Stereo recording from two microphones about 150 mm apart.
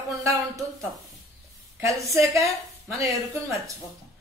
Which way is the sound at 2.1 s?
20° right (ahead or behind).